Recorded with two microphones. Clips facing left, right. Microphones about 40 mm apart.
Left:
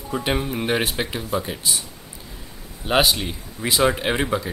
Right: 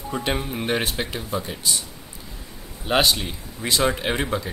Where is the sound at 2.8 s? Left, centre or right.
Centre.